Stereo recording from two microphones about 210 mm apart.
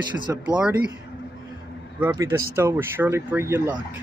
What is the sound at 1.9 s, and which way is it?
Speech, 15° right (ahead or behind).